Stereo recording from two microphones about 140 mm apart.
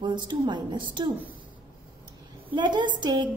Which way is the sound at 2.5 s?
35° right (ahead or behind).